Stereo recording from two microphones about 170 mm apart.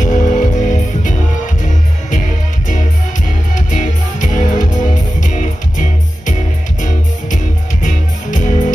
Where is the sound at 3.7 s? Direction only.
50° left (ahead or behind).